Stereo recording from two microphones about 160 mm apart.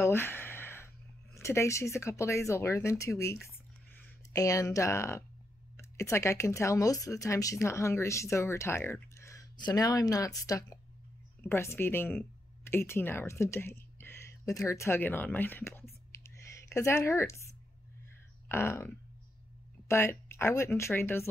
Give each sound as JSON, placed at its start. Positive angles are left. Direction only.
{"t": 0.0, "sound": "speech", "side_deg": 15}
{"t": 3.4, "sound": "a sound", "side_deg": 15}
{"t": 4.4, "sound": "speech", "side_deg": 20}
{"t": 16.2, "sound": "a sound", "side_deg": 20}
{"t": 18.5, "sound": "speech", "side_deg": 15}
{"t": 19.9, "sound": "speech", "side_deg": 15}